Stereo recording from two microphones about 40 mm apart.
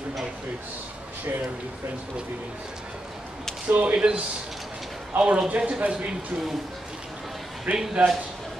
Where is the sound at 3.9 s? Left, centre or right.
Right.